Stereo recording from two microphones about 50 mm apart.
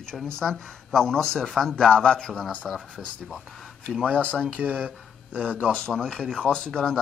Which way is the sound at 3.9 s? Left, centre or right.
Centre.